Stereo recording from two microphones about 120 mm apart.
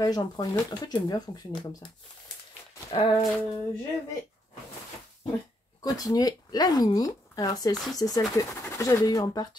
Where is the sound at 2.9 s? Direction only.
50° left (ahead or behind).